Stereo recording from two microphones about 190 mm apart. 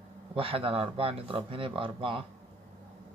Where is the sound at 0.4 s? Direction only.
30° right (ahead or behind).